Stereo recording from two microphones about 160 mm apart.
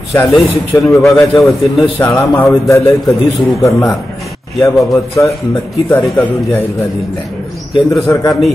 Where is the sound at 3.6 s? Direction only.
20° left (ahead or behind).